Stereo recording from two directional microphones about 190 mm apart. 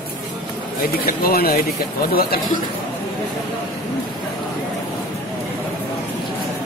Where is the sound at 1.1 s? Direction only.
50° left (ahead or behind).